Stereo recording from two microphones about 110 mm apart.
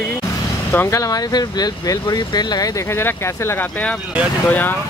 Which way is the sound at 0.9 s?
35° left (ahead or behind).